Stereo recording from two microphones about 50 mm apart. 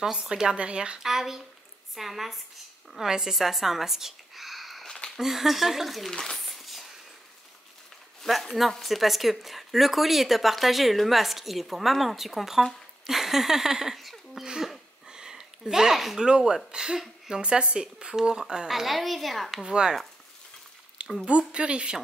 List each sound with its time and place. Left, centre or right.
0.0 s speech: centre
1.0 s speech: centre
6.0 s a sound: centre
8.3 s speech: centre
13.0 s a sound: centre
16.2 s speech: centre
19.6 s speech: centre
21.3 s speech: right